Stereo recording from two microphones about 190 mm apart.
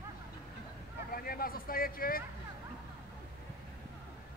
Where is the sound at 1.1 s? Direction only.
50° left (ahead or behind).